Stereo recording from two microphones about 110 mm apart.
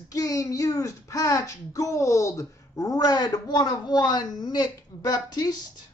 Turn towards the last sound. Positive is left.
turn(degrees=35)  # may be behind; listen again after turning